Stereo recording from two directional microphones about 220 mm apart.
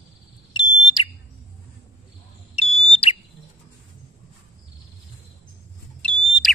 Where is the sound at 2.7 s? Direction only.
25° left (ahead or behind).